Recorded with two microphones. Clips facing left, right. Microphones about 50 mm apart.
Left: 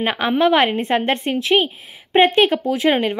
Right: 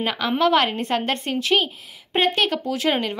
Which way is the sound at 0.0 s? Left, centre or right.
Left.